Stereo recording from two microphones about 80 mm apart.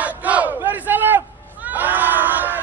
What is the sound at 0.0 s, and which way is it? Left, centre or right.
Battle cry, centre.